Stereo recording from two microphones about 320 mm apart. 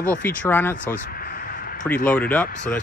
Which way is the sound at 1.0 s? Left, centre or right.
Left.